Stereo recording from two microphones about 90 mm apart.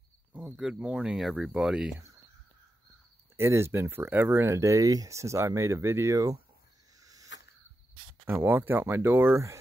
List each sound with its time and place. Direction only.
0.3 s speech: 10° right (ahead or behind)
3.3 s speech: 30° right (ahead or behind)
7.0 s cricket: 40° right (ahead or behind)
8.3 s speech: 25° right (ahead or behind)